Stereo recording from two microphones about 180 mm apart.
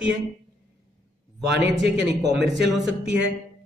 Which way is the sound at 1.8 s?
70° right (ahead or behind).